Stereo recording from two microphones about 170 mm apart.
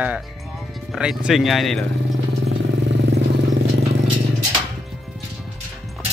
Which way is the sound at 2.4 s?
90° right.